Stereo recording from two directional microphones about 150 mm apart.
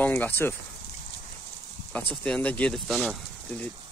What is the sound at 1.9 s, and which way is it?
Speech, 10° left (ahead or behind).